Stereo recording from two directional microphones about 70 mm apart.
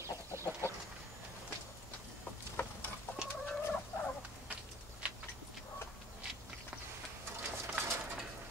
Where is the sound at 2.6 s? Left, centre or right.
Left.